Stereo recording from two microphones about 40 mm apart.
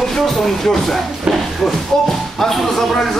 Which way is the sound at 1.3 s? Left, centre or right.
Centre.